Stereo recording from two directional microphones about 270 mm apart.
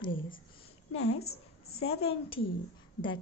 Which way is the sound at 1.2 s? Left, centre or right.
Left.